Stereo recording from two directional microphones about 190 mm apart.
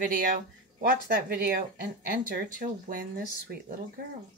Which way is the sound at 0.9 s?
55° right (ahead or behind).